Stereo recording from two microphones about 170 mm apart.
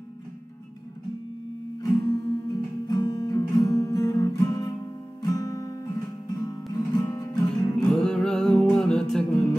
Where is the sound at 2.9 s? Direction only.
20° left (ahead or behind).